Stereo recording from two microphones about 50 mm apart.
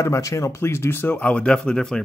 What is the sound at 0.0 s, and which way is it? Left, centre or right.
Speech, left.